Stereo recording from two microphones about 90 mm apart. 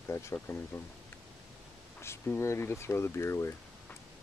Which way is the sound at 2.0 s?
30° left (ahead or behind).